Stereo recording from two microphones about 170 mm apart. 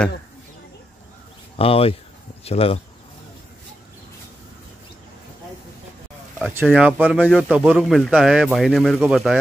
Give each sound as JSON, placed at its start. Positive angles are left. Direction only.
{"t": 1.6, "sound": "speech", "side_deg": 35}
{"t": 6.5, "sound": "speech", "side_deg": -10}